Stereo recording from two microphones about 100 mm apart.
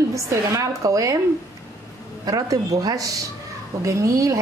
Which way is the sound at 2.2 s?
35° right (ahead or behind).